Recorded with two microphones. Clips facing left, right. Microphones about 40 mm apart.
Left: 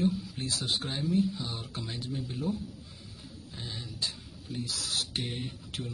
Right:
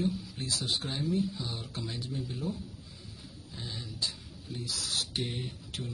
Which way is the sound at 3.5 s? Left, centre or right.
Left.